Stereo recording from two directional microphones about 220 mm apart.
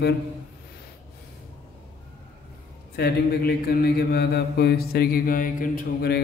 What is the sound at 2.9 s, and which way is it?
Mantra, 45° left (ahead or behind).